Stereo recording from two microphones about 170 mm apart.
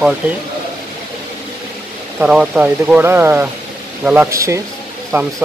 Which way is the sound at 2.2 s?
5° right (ahead or behind).